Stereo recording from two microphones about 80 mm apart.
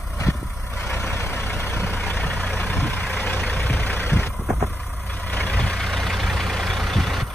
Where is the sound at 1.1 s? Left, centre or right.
Left.